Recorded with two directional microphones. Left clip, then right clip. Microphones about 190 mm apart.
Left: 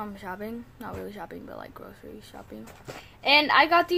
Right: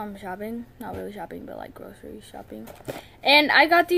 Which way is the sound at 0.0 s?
15° right (ahead or behind).